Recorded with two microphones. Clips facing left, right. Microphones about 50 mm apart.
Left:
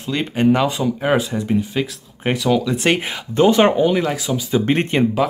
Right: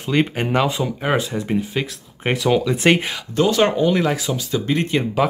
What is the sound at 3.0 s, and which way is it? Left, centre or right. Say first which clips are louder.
Speech: left 4 dB; centre.